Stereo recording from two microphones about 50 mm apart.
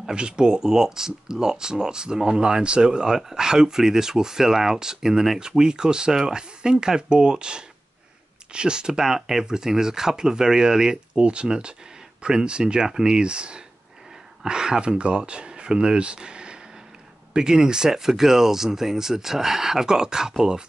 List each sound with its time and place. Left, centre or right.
0.1 s speech: centre